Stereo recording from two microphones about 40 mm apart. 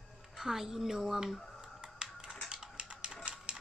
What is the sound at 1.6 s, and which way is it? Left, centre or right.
Finger snapping, centre.